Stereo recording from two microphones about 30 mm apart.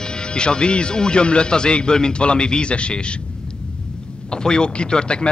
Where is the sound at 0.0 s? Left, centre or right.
Left.